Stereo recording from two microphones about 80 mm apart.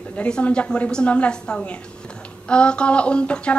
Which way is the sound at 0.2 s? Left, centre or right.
Centre.